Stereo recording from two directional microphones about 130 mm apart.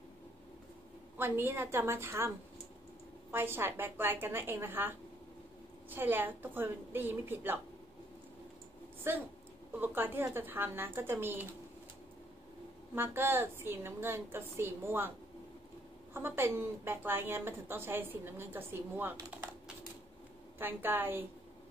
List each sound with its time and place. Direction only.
1.1 s a woman's voice: 15° right (ahead or behind)
9.1 s a woman's voice: 20° right (ahead or behind)
12.9 s a woman's voice: 15° right (ahead or behind)
20.5 s a woman's voice: 15° right (ahead or behind)